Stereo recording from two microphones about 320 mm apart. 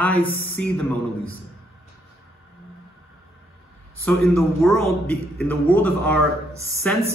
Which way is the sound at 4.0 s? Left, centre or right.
Centre.